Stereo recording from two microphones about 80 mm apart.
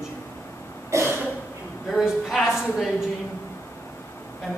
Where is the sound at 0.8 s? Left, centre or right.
Right.